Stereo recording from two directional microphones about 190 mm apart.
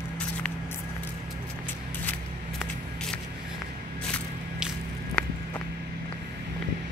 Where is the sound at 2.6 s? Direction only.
5° left (ahead or behind).